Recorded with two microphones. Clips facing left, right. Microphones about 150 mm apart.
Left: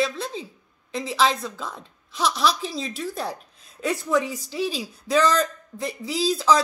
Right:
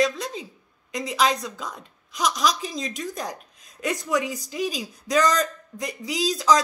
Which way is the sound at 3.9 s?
15° right (ahead or behind).